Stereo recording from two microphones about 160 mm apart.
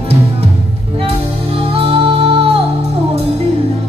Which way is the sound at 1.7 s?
35° right (ahead or behind).